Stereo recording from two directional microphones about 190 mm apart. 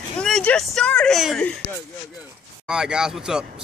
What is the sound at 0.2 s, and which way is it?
Speech, 5° left (ahead or behind).